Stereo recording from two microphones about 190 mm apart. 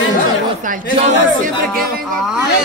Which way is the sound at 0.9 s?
40° right (ahead or behind).